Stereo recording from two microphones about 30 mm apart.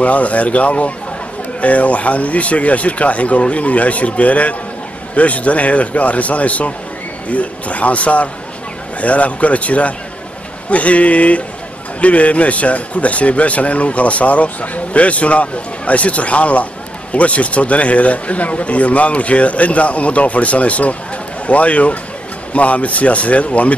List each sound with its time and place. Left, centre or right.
0.0 s a man's voice: left